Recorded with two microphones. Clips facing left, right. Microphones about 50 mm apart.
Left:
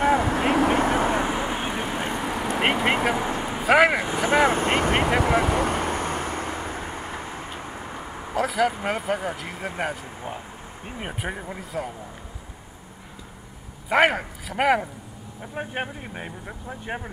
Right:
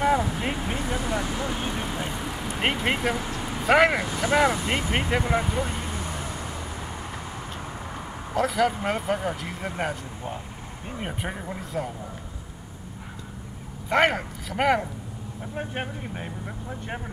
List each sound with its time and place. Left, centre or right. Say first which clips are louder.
0.2 s vehicle: left 7 dB; left
0.8 s vehicle: left 6 dB; left
2.1 s vehicle: left 5 dB; left
2.8 s vehicle: left 3 dB; centre
3.2 s vehicle: left 4 dB; left
3.6 s speech: left 1 dB; centre
4.0 s speech: left 2 dB; centre
4.5 s speech: left 4 dB; left
5.2 s vehicle: left 4 dB; left
6.8 s vehicle: left 3 dB; left
7.4 s speech: left 1 dB; centre
13.8 s speech: left 2 dB; centre